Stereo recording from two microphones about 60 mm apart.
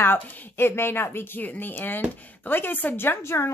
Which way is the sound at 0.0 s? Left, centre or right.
Left.